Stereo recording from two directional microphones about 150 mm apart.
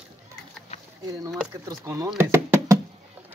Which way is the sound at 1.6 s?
25° right (ahead or behind).